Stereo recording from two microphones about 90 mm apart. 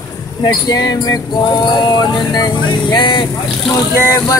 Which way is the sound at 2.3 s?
50° left (ahead or behind).